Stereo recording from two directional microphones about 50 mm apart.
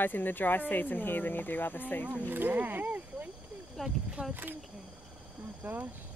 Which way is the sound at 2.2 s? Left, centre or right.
Right.